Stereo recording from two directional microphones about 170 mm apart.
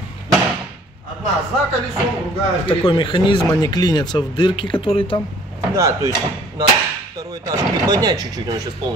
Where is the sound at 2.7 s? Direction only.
30° left (ahead or behind).